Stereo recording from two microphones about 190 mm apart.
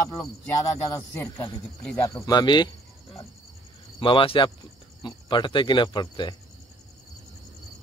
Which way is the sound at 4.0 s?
25° left (ahead or behind).